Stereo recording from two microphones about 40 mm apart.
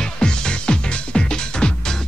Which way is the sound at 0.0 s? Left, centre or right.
Centre.